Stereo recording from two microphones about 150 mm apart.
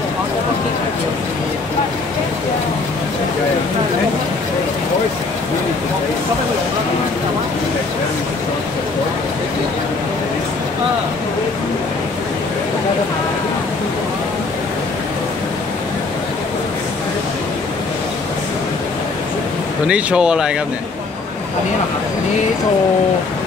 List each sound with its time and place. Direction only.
19.9 s speech: 5° right (ahead or behind)